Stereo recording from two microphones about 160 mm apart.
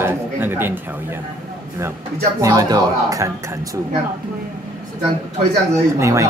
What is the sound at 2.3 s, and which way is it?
Speech, 25° right (ahead or behind).